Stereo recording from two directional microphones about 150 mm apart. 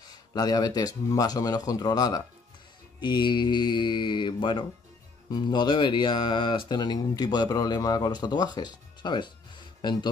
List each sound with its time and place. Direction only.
0.3 s speech: 25° left (ahead or behind)